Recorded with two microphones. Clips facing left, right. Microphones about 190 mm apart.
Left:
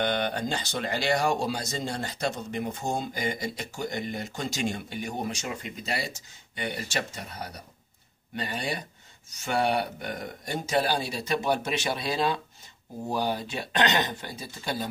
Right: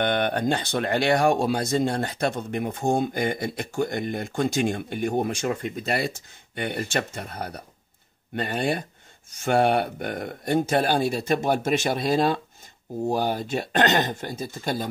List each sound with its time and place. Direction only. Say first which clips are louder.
0.0 s speech: right 4 dB; 55° right (ahead or behind)